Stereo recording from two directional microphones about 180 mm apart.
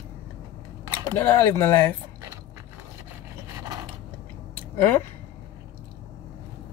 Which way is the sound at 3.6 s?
20° right (ahead or behind).